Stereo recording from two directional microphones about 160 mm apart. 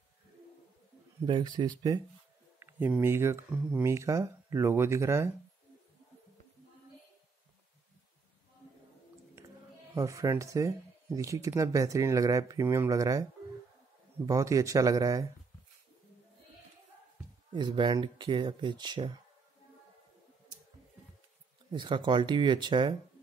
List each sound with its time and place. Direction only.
1.2 s speech: 30° right (ahead or behind)
2.6 s speech: 15° right (ahead or behind)
9.9 s speech: 20° right (ahead or behind)
17.6 s speech: 30° right (ahead or behind)
21.7 s speech: 30° right (ahead or behind)